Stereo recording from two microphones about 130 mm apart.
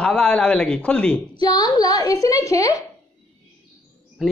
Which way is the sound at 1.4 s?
30° left (ahead or behind).